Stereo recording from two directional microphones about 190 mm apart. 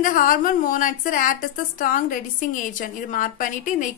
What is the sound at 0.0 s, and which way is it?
A woman's voice, 45° left (ahead or behind).